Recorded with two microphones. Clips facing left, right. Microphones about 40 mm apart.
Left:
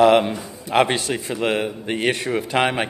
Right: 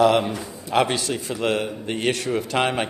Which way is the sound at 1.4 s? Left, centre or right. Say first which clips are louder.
Left 1 dB; centre.